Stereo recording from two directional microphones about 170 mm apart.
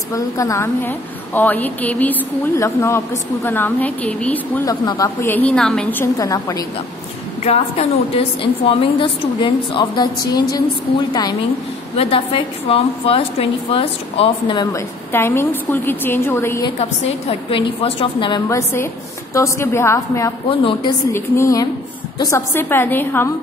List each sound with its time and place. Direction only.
0.1 s a woman's voice: 20° left (ahead or behind)
4.6 s a woman's voice: 20° left (ahead or behind)
6.1 s a woman's voice: 20° left (ahead or behind)
7.4 s a woman's voice: 35° left (ahead or behind)
12.0 s a woman's voice: 35° left (ahead or behind)
15.1 s a woman's voice: 15° left (ahead or behind)
17.3 s a woman's voice: 35° left (ahead or behind)
18.5 s a woman's voice: 15° left (ahead or behind)
20.4 s a woman's voice: 30° left (ahead or behind)
21.1 s a woman's voice: 20° left (ahead or behind)